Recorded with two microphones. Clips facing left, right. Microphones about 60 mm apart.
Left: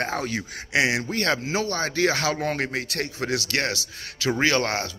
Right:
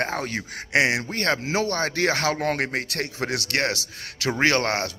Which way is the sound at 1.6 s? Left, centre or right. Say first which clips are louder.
Left 1 dB; right.